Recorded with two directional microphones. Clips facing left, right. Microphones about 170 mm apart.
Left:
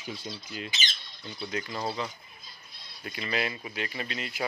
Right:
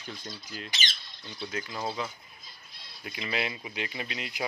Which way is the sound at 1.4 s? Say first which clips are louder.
Left 1 dB; centre (ahead or behind).